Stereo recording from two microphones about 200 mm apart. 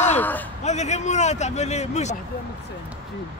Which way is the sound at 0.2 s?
10° left (ahead or behind).